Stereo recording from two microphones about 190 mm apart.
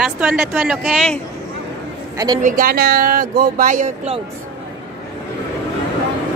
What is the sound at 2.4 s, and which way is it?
Speech, 50° right (ahead or behind).